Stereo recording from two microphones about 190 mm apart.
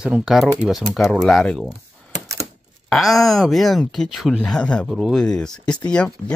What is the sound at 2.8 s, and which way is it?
Speech, centre (ahead or behind).